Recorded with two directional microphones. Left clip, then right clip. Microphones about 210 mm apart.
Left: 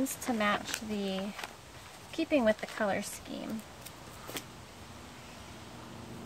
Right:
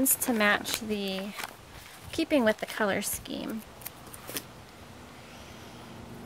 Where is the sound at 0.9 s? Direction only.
45° right (ahead or behind).